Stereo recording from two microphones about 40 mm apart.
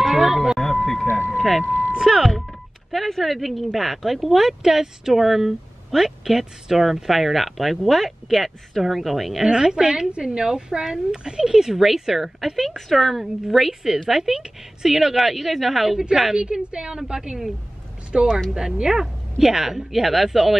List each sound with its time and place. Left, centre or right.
0.0 s music: centre
0.6 s a sound: centre
1.3 s vehicle: centre
2.0 s a woman's voice: centre
2.9 s speech: centre
9.7 s a woman's voice: centre
13.2 s a woman's voice: centre
16.3 s a woman's voice: right